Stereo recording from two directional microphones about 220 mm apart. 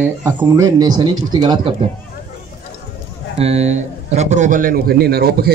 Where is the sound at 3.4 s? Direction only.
30° right (ahead or behind).